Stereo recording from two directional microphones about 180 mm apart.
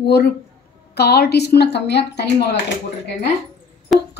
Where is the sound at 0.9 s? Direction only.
65° left (ahead or behind).